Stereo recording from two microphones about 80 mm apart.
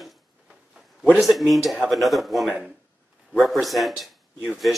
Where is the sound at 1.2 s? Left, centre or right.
Centre.